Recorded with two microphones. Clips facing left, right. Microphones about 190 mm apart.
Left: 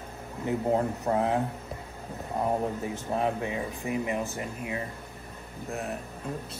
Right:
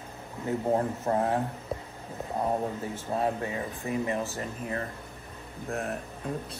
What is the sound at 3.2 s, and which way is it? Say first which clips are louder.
Speech: even; 15° left (ahead or behind).